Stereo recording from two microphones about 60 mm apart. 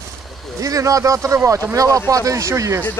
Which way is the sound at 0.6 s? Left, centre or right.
Right.